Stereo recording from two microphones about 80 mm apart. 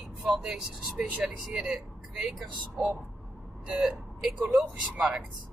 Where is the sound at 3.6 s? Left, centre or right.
Centre.